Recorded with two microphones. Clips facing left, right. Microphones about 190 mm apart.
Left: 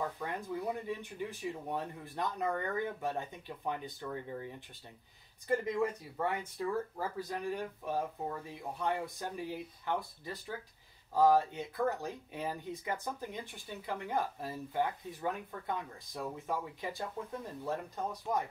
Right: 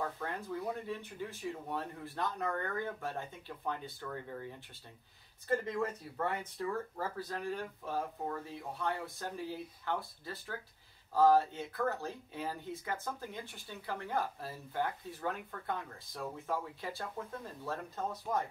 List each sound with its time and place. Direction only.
0.2 s speech: 15° left (ahead or behind)